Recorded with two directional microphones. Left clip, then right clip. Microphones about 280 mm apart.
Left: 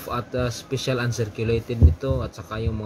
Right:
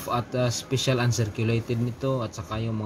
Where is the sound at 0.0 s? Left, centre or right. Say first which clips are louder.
Even; centre.